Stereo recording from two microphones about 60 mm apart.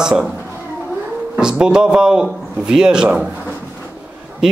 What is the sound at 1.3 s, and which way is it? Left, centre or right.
A man's voice, centre.